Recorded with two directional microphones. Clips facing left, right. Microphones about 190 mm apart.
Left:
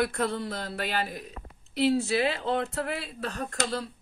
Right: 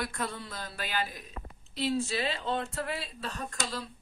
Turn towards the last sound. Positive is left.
turn(degrees=60)  # may be behind; listen again after turning